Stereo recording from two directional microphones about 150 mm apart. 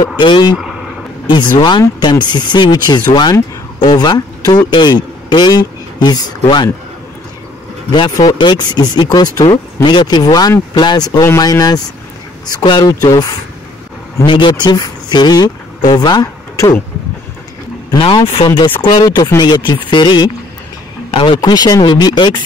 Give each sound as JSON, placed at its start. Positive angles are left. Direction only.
{"t": 0.2, "sound": "speech", "side_deg": 30}
{"t": 0.6, "sound": "vehicle", "side_deg": -5}
{"t": 1.3, "sound": "speech", "side_deg": 30}
{"t": 7.9, "sound": "speech", "side_deg": 30}
{"t": 17.9, "sound": "speech", "side_deg": 35}